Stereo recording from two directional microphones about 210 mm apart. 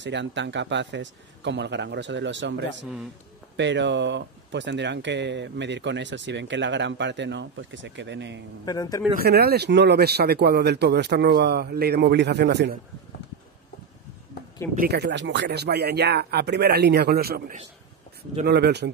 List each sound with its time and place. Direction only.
0.0 s speech: 60° right (ahead or behind)
8.6 s a man's voice: 15° left (ahead or behind)
9.1 s speech: 45° right (ahead or behind)
14.8 s speech: 50° right (ahead or behind)